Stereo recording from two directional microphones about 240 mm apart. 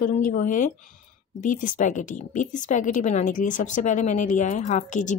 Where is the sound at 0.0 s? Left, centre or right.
Left.